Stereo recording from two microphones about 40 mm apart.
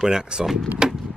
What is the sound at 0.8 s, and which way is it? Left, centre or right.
Wood, centre.